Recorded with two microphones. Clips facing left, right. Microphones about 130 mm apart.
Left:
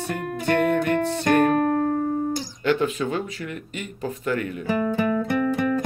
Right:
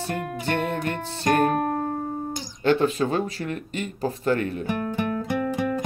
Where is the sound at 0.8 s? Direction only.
30° right (ahead or behind).